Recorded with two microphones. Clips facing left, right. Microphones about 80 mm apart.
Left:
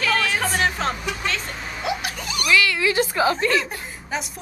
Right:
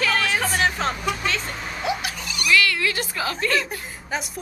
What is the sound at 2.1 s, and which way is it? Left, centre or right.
Speech, left.